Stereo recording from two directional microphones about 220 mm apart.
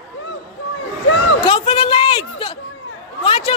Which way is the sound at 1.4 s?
25° left (ahead or behind).